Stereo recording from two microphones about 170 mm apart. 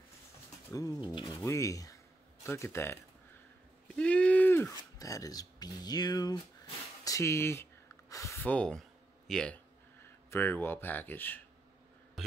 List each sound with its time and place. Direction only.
0.7 s speech: 20° left (ahead or behind)
3.9 s a sound: 5° left (ahead or behind)
4.9 s speech: 20° left (ahead or behind)
12.2 s music: centre (ahead or behind)